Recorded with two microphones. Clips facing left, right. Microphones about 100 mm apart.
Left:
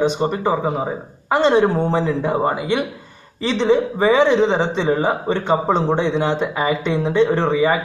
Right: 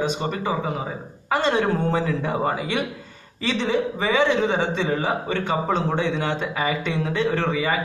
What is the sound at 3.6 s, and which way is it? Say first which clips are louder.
A man's voice: left 9 dB; 25° left (ahead or behind).